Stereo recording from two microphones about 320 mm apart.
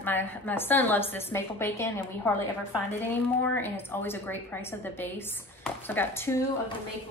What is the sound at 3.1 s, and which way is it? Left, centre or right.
Speech, centre.